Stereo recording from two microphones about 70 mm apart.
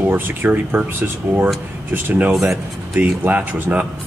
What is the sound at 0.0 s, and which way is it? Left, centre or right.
Speech, right.